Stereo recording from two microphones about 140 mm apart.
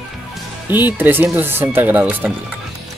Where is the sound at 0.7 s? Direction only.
15° right (ahead or behind).